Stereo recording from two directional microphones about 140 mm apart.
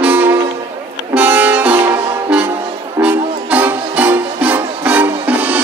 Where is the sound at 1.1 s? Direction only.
10° right (ahead or behind).